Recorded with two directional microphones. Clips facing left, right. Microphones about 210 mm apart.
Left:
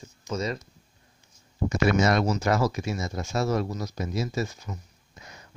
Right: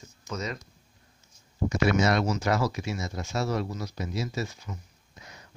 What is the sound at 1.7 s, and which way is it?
Speech, 45° left (ahead or behind).